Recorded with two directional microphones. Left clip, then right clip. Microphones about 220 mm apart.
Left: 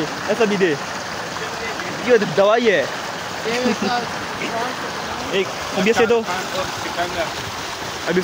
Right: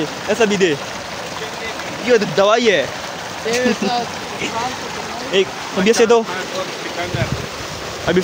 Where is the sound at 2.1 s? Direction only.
15° right (ahead or behind).